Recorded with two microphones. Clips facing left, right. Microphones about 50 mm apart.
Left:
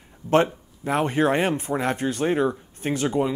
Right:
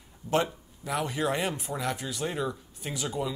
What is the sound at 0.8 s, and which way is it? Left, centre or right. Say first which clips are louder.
Speech: left 8 dB; left.